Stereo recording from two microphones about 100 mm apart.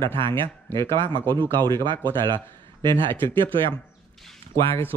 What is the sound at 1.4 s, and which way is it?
Speech, 50° right (ahead or behind).